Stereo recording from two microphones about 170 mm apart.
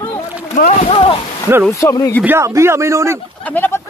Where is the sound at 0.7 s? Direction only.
35° left (ahead or behind).